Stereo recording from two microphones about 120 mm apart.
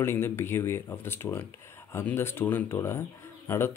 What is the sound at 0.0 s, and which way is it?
Speech, 20° left (ahead or behind).